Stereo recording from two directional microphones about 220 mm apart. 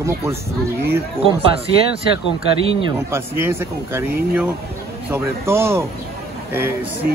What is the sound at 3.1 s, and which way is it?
Speech, 10° right (ahead or behind).